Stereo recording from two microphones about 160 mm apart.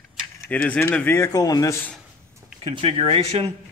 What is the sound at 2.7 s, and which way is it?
Speech, 40° right (ahead or behind).